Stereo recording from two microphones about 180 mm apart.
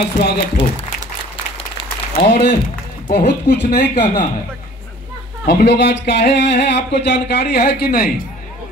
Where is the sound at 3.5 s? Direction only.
65° left (ahead or behind).